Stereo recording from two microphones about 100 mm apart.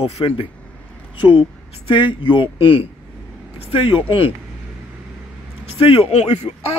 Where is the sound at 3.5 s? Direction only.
75° left (ahead or behind).